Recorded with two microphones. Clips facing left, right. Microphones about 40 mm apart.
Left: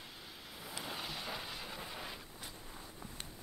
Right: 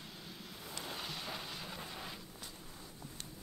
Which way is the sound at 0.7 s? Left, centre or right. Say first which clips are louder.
Left 1 dB; centre.